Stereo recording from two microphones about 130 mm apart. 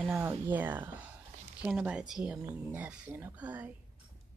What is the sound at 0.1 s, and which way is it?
Speech, 15° right (ahead or behind).